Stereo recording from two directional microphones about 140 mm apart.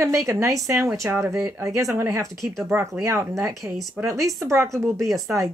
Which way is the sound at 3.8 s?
Centre (ahead or behind).